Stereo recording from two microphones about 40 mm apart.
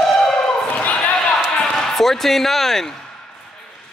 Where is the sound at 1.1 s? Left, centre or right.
Centre.